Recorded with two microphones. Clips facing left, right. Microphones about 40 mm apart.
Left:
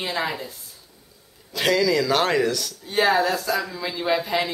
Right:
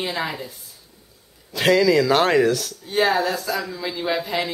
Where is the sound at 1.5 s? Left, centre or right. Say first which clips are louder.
Right 4 dB; centre.